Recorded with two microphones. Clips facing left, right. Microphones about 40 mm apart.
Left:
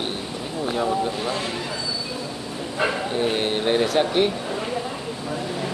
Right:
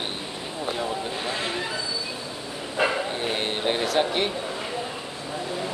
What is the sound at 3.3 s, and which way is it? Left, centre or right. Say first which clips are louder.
Speech: left 4 dB; centre.